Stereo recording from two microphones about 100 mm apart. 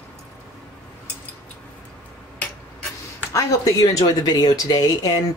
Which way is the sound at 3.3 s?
35° left (ahead or behind).